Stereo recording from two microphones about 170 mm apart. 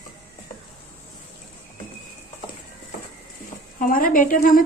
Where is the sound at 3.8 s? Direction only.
55° left (ahead or behind).